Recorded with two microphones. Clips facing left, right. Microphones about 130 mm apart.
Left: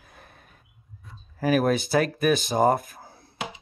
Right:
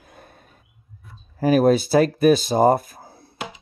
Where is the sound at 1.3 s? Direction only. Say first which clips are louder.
Right 6 dB; 35° right (ahead or behind).